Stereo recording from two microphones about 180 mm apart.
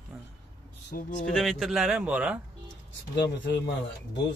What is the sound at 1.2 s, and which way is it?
Speech, centre (ahead or behind).